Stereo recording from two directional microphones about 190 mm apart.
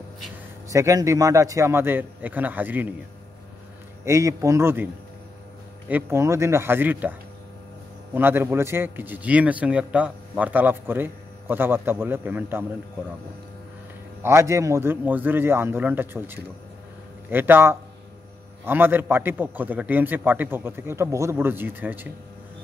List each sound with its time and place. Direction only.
0.7 s a man's voice: 15° right (ahead or behind)
4.0 s a man's voice: 15° right (ahead or behind)
5.9 s a man's voice: 10° right (ahead or behind)
14.2 s a man's voice: 15° right (ahead or behind)